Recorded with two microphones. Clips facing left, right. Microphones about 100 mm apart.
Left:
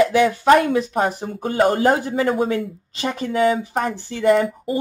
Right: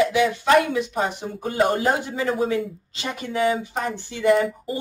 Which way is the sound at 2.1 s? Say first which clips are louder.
Left 3 dB; 50° left (ahead or behind).